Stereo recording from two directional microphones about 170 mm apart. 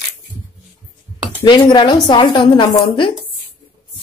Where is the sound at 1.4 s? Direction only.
25° left (ahead or behind).